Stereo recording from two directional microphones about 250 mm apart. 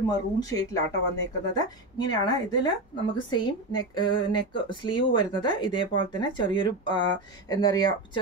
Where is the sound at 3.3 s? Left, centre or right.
Centre.